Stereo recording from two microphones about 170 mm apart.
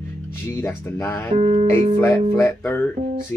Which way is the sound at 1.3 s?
40° right (ahead or behind).